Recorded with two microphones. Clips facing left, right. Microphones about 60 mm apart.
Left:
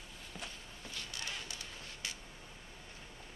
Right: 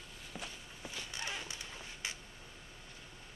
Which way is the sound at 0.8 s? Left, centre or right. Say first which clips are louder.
Right 2 dB; centre.